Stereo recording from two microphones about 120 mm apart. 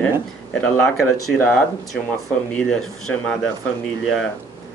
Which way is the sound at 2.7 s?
5° left (ahead or behind).